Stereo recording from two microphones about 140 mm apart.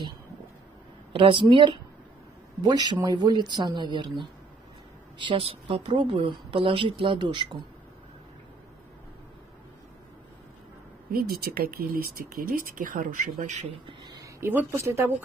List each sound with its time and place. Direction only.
1.1 s a woman's voice: 35° right (ahead or behind)
5.2 s a woman's voice: 40° right (ahead or behind)
11.1 s speech: 90° right
13.4 s speech: 55° right (ahead or behind)
13.8 s a sound: 30° right (ahead or behind)
14.4 s speech: 15° right (ahead or behind)